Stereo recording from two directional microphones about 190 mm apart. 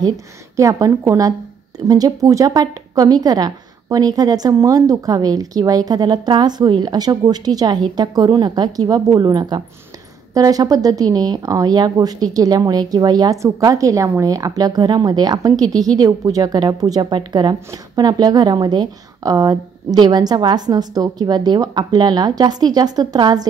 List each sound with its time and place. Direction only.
0.6 s a woman's voice: 15° right (ahead or behind)